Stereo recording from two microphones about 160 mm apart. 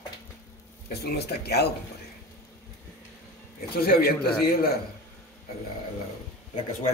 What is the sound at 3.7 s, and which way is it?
A man's voice, 70° left (ahead or behind).